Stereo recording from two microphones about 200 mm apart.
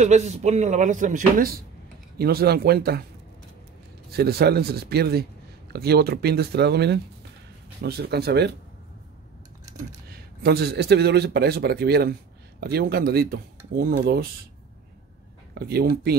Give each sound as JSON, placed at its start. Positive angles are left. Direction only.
{"t": 0.0, "sound": "speech", "side_deg": -35}
{"t": 4.1, "sound": "speech", "side_deg": -50}
{"t": 10.0, "sound": "speech", "side_deg": -50}
{"t": 15.5, "sound": "speech", "side_deg": -50}